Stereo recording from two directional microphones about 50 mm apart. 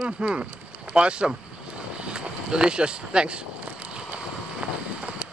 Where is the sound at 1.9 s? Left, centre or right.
Centre.